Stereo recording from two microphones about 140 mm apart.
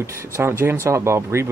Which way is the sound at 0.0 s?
20° right (ahead or behind).